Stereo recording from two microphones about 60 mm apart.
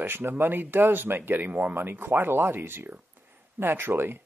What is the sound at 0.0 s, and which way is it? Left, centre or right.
Speech, right.